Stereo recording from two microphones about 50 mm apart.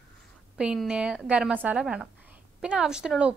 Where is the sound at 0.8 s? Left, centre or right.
Right.